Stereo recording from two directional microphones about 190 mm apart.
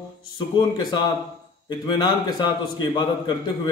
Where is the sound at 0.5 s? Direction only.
25° left (ahead or behind).